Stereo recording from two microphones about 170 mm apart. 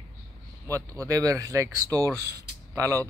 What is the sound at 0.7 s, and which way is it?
Speech, 20° right (ahead or behind).